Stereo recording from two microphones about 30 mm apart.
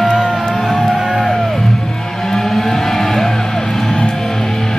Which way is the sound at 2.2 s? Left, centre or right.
Centre.